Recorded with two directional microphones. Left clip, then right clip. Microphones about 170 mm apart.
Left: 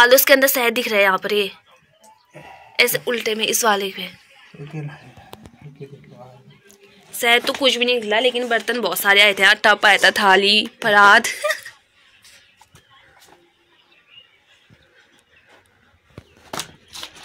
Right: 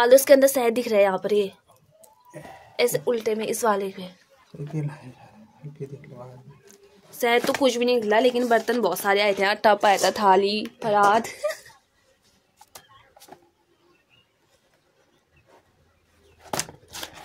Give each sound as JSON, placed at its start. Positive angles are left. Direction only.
{"t": 0.0, "sound": "a woman's voice", "side_deg": -15}
{"t": 7.2, "sound": "speech", "side_deg": -20}
{"t": 9.0, "sound": "a woman's voice", "side_deg": -15}